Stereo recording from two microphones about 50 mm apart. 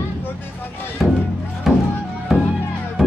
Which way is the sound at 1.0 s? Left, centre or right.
Centre.